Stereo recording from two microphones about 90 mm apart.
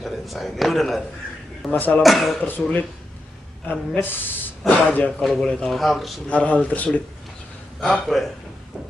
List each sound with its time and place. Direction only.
0.0 s speech: centre (ahead or behind)
1.7 s speech: 15° left (ahead or behind)
2.0 s speech: centre (ahead or behind)
2.4 s speech: 20° left (ahead or behind)
3.9 s speech: 20° left (ahead or behind)
5.2 s speech: 5° left (ahead or behind)
6.2 s speech: 15° left (ahead or behind)
7.8 s speech: centre (ahead or behind)